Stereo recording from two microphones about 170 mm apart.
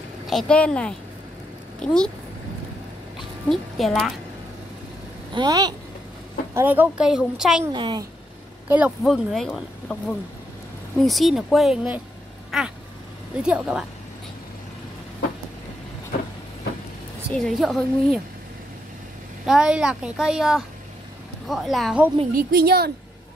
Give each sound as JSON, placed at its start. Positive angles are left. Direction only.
{"t": 0.3, "sound": "speech", "side_deg": 5}
{"t": 3.4, "sound": "speech", "side_deg": 0}
{"t": 5.3, "sound": "speech", "side_deg": -25}
{"t": 6.5, "sound": "speech", "side_deg": -10}
{"t": 7.7, "sound": "speech", "side_deg": -25}
{"t": 8.6, "sound": "speech", "side_deg": -10}
{"t": 12.4, "sound": "cat", "side_deg": 0}
{"t": 13.4, "sound": "speech", "side_deg": -5}
{"t": 17.3, "sound": "speech", "side_deg": 0}
{"t": 19.4, "sound": "speech", "side_deg": -5}
{"t": 22.3, "sound": "a woman's voice", "side_deg": -60}